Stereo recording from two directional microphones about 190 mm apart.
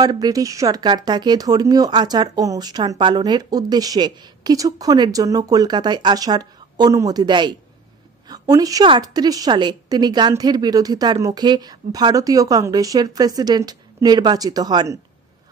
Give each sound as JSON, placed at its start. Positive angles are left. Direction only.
{"t": 0.0, "sound": "speech", "side_deg": -20}